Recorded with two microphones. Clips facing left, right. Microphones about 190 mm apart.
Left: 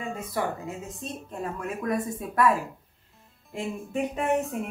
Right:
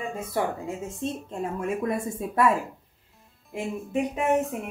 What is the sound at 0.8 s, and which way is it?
A woman's voice, 25° right (ahead or behind).